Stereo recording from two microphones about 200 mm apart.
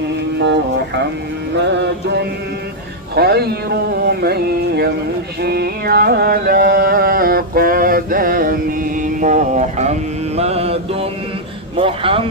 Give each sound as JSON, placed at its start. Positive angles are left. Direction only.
{"t": 0.4, "sound": "speech", "side_deg": -60}
{"t": 3.2, "sound": "music", "side_deg": -55}
{"t": 5.4, "sound": "carnatic music", "side_deg": -55}
{"t": 11.7, "sound": "a sound", "side_deg": -25}